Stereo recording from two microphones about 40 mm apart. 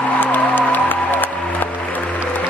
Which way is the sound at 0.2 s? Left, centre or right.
Left.